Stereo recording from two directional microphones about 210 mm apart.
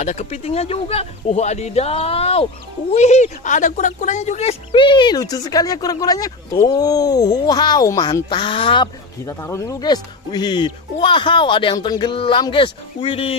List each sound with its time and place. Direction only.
0.0 s speech: 35° left (ahead or behind)